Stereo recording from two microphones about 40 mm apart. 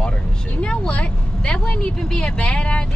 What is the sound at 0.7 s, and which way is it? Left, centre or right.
Vehicle, left.